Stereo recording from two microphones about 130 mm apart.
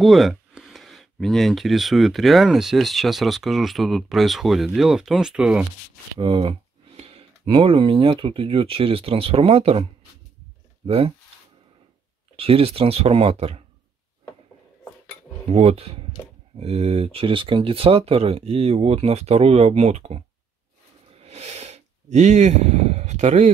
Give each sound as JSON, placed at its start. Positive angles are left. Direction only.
{"t": 0.0, "sound": "speech", "side_deg": 0}
{"t": 6.1, "sound": "speech", "side_deg": -40}
{"t": 7.0, "sound": "speech", "side_deg": -50}
{"t": 10.9, "sound": "speech", "side_deg": -45}
{"t": 12.4, "sound": "speech", "side_deg": -45}
{"t": 15.5, "sound": "speech", "side_deg": -50}
{"t": 21.1, "sound": "a sound", "side_deg": -55}